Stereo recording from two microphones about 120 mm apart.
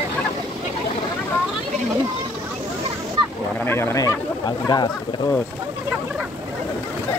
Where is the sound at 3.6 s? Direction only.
20° left (ahead or behind).